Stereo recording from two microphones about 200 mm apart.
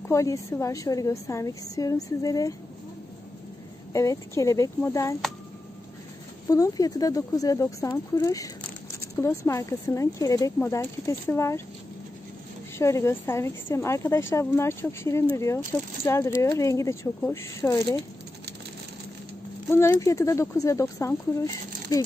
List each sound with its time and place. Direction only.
0.1 s speech: 15° left (ahead or behind)
3.9 s speech: 15° left (ahead or behind)
6.4 s speech: 15° left (ahead or behind)
12.7 s speech: 15° left (ahead or behind)
19.7 s speech: 15° left (ahead or behind)